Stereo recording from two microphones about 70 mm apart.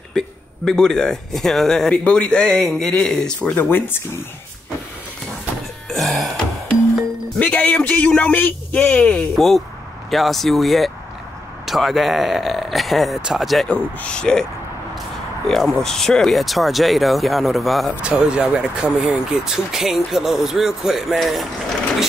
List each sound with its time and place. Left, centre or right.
0.7 s speech: centre
3.4 s a man's voice: left
5.9 s music: centre
7.3 s a man's voice: centre
10.0 s speech: centre
13.7 s speech: centre
15.4 s speech: centre
18.0 s speech: centre